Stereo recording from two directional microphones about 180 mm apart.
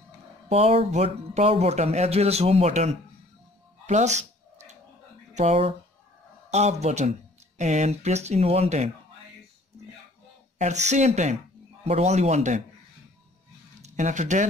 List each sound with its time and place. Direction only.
0.5 s speech: 35° right (ahead or behind)
3.8 s a sound: 40° right (ahead or behind)
5.3 s speech: 35° right (ahead or behind)
10.6 s speech: 40° right (ahead or behind)
13.8 s speech: 40° right (ahead or behind)